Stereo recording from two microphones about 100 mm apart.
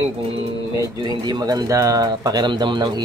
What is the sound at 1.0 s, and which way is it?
Speech, 45° right (ahead or behind).